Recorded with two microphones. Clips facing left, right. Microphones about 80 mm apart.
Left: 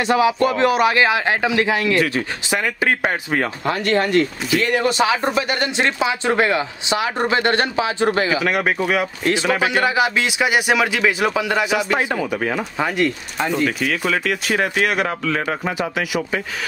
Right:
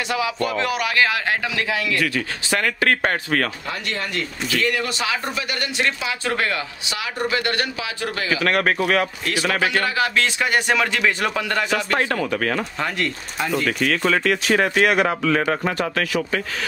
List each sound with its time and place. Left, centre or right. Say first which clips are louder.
0.1 s speech: left 7 dB; left; by 3.4 s centre
3.6 s speech: left 9 dB; left
4.6 s speech: left 6 dB; left
8.4 s speech: even; centre
9.2 s speech: left 3 dB; left